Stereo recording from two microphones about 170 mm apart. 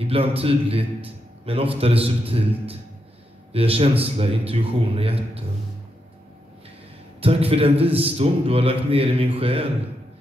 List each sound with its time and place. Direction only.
0.0 s a man's voice: 35° right (ahead or behind)
7.2 s a man's voice: 35° right (ahead or behind)